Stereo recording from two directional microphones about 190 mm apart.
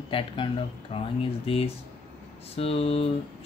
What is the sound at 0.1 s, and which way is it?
Speech, 30° left (ahead or behind).